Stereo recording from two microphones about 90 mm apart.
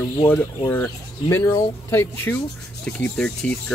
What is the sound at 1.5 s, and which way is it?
Speech, 25° left (ahead or behind).